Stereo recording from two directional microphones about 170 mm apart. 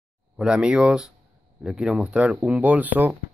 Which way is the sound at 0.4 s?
5° right (ahead or behind).